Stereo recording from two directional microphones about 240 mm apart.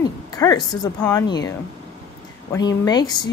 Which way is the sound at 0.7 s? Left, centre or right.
Centre.